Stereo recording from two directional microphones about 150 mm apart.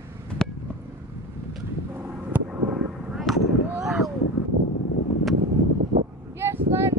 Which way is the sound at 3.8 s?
Centre (ahead or behind).